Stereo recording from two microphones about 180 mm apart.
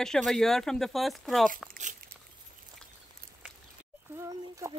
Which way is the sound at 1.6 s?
45° right (ahead or behind).